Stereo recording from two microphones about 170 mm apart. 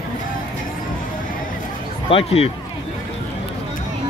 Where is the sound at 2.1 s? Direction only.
35° left (ahead or behind).